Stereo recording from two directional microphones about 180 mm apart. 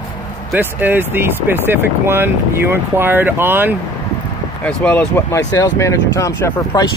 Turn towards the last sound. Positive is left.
turn(degrees=20)  # may be behind; listen again after turning